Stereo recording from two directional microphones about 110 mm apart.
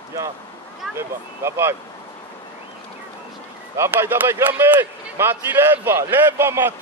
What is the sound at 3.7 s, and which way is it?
A man's voice, 25° right (ahead or behind).